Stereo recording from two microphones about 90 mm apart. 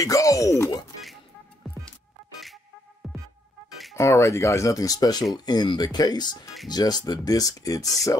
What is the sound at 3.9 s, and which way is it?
Speech, 35° left (ahead or behind).